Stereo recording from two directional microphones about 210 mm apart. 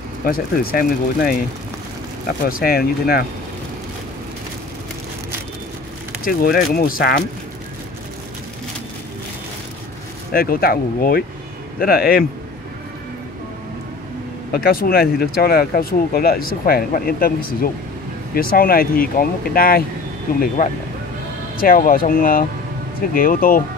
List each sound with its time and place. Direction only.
0.2 s speech: 45° left (ahead or behind)
6.2 s speech: 45° left (ahead or behind)
10.3 s speech: 45° left (ahead or behind)
14.5 s speech: 45° left (ahead or behind)
18.3 s speech: 45° left (ahead or behind)
21.5 s speech: 40° left (ahead or behind)